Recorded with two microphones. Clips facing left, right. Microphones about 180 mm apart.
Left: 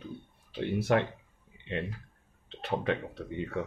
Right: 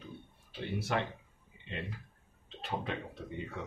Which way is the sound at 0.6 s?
60° left (ahead or behind).